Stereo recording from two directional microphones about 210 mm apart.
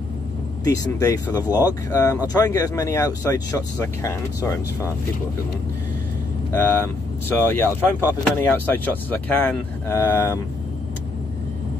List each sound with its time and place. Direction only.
0.7 s speech: 15° left (ahead or behind)
6.6 s speech: 10° left (ahead or behind)